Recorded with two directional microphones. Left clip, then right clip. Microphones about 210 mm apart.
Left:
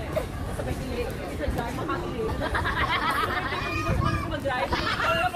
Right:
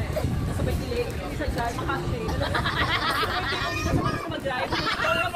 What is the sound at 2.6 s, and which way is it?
Snicker, 60° right (ahead or behind).